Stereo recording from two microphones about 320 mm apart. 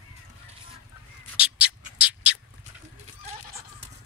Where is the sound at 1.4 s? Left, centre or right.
Centre.